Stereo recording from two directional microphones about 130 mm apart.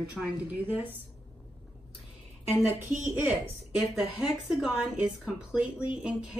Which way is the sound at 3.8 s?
5° right (ahead or behind).